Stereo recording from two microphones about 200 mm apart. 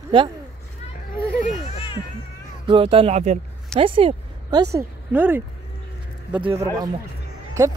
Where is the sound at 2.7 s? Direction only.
25° right (ahead or behind).